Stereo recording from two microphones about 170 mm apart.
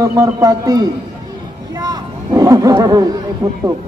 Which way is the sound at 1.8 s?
20° right (ahead or behind).